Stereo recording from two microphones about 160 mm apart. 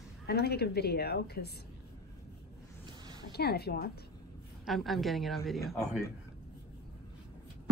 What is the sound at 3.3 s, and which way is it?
Speech, 85° left.